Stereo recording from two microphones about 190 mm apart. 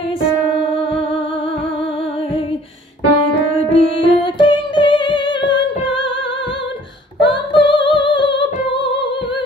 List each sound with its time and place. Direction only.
3.7 s music: 25° left (ahead or behind)
7.2 s female singing: 25° left (ahead or behind)